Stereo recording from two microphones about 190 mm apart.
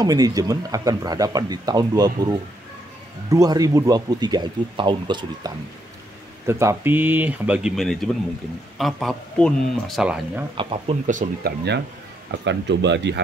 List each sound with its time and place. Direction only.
0.0 s speech: 20° right (ahead or behind)
10.6 s speech: 30° right (ahead or behind)
11.1 s speech: 45° right (ahead or behind)
12.4 s speech: 70° right (ahead or behind)